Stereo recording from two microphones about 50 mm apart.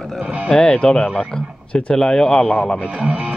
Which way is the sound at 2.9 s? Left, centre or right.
Right.